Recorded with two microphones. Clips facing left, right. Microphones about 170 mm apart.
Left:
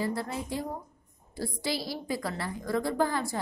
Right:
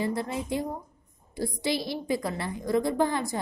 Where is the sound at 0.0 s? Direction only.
20° right (ahead or behind).